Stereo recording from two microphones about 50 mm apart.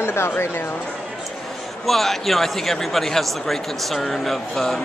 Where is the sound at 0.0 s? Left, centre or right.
Left.